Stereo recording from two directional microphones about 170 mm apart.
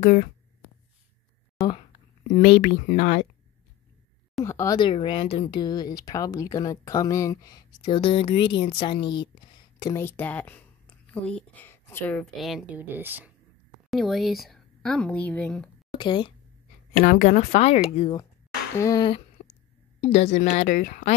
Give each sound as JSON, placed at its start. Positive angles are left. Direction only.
{"t": 0.0, "sound": "speech", "side_deg": 45}
{"t": 1.6, "sound": "a sound", "side_deg": 25}
{"t": 2.9, "sound": "speech", "side_deg": 45}
{"t": 4.4, "sound": "a woman's voice", "side_deg": 20}
{"t": 12.7, "sound": "speech", "side_deg": -10}
{"t": 13.8, "sound": "a woman's voice", "side_deg": 0}
{"t": 16.0, "sound": "speech", "side_deg": 25}
{"t": 16.9, "sound": "speech", "side_deg": 55}
{"t": 18.8, "sound": "speech", "side_deg": 20}